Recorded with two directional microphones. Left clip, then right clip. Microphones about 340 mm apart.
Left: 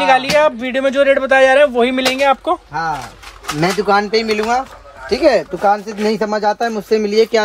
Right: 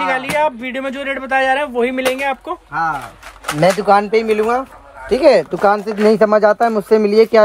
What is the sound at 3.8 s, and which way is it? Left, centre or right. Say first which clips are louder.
Speech: right 2 dB; centre.